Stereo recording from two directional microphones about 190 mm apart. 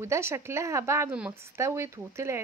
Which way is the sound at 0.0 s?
15° right (ahead or behind).